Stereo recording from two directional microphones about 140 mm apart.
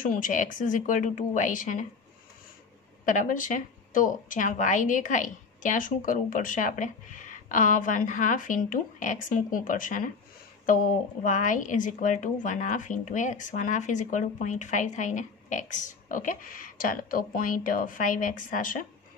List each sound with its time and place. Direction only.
0.0 s a woman's voice: 75° left (ahead or behind)
3.1 s a woman's voice: 65° left (ahead or behind)